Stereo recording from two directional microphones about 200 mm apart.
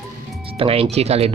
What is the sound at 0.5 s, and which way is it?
Speech, 30° right (ahead or behind).